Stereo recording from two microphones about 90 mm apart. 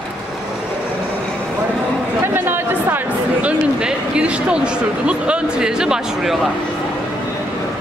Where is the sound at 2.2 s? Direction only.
25° right (ahead or behind).